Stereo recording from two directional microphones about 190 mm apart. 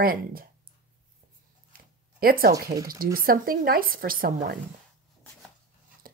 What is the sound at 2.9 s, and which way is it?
Speech, 50° right (ahead or behind).